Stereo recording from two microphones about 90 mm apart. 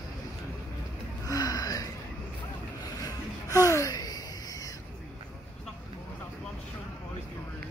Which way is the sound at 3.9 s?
45° left (ahead or behind).